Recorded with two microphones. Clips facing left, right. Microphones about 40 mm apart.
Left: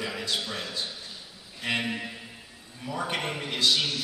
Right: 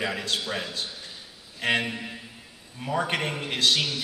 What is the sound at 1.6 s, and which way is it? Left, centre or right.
Speech, right.